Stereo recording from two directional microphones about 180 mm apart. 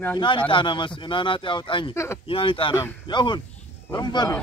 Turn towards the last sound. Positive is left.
turn(degrees=25)  # may be behind; listen again after turning